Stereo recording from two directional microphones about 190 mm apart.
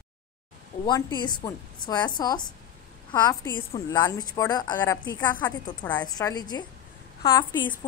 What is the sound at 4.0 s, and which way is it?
A woman's voice, 20° left (ahead or behind).